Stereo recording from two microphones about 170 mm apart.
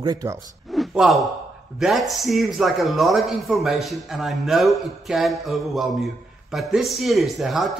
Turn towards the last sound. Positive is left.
turn(degrees=0)  # may be behind; listen again after turning